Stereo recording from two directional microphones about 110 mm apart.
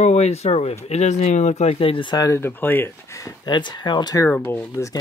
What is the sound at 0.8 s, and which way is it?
Speech, 90° left.